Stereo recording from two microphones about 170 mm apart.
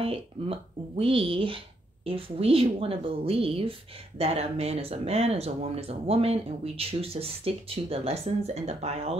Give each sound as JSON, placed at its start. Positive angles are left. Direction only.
{"t": 0.0, "sound": "speech", "side_deg": -35}